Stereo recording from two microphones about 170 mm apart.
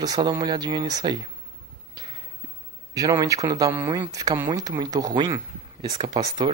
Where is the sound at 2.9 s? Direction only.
20° right (ahead or behind).